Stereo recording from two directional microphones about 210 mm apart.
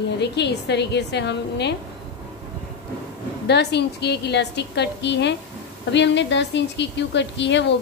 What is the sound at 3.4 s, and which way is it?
A woman's voice, 50° left (ahead or behind).